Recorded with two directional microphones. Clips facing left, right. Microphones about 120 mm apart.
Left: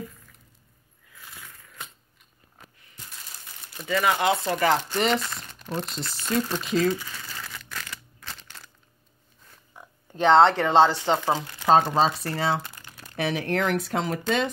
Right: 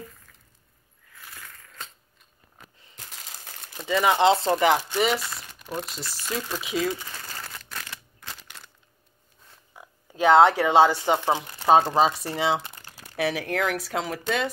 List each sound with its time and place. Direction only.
1.3 s coin: 10° left (ahead or behind)
3.0 s coin: 90° right
3.7 s speech: 20° right (ahead or behind)
4.6 s speech: 10° right (ahead or behind)
7.2 s crumpling: 40° right (ahead or behind)
9.8 s speech: 5° right (ahead or behind)